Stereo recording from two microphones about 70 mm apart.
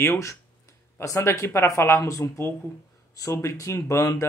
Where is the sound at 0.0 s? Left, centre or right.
Left.